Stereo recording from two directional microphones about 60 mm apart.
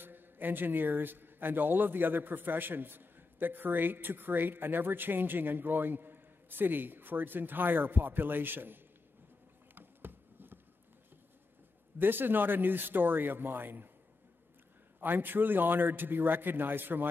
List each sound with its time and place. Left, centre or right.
0.0 s a man's voice: right
9.8 s a sound: right
12.0 s a man's voice: right
15.0 s a man's voice: right